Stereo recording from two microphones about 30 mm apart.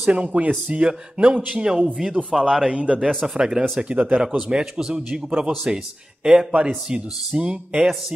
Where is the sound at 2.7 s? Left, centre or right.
Right.